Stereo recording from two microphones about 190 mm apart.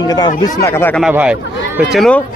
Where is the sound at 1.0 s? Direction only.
5° right (ahead or behind).